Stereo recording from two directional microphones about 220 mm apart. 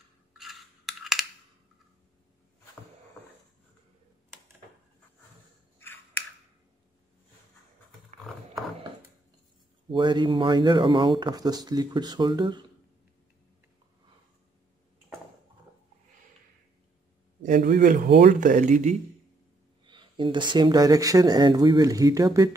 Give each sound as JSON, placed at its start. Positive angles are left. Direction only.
{"t": 0.3, "sound": "a sound", "side_deg": 0}
{"t": 9.8, "sound": "speech", "side_deg": -20}
{"t": 17.4, "sound": "speech", "side_deg": -35}
{"t": 19.8, "sound": "speech", "side_deg": -20}